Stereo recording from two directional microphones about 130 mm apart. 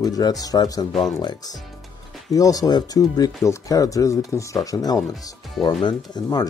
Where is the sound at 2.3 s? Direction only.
25° left (ahead or behind).